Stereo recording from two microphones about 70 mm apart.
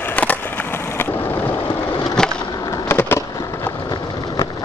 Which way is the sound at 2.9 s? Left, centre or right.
Left.